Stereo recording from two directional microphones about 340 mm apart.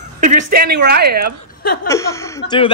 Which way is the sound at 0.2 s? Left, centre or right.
Right.